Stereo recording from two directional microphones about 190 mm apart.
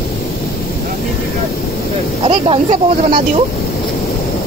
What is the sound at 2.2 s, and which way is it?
Speech, 30° right (ahead or behind).